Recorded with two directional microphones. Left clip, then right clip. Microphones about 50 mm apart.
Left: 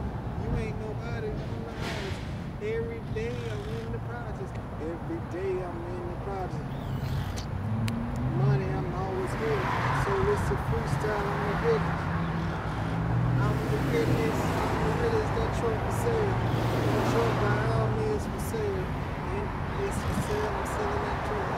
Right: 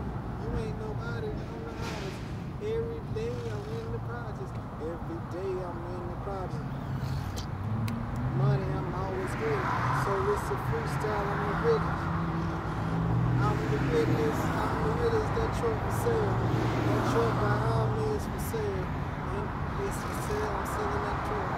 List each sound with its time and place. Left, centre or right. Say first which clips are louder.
9.2 s vehicle: left 1 dB; centre
13.5 s vehicle: right 1 dB; centre
14.5 s a sound: left 1 dB; right
16.4 s vehicle: left 1 dB; centre; by 17.7 s right
19.8 s music: left 2 dB; centre